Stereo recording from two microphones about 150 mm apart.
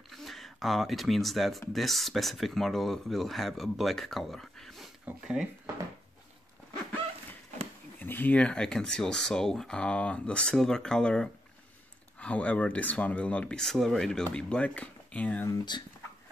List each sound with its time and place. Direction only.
0.1 s speech: centre (ahead or behind)
8.0 s speech: 10° left (ahead or behind)
15.5 s speech: 30° left (ahead or behind)